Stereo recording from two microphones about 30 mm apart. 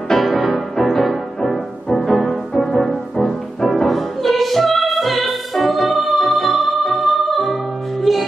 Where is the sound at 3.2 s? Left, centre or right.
Centre.